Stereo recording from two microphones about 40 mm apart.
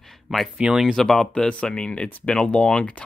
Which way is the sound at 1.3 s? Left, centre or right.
Left.